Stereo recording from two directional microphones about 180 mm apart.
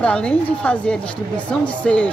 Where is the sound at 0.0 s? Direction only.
5° left (ahead or behind).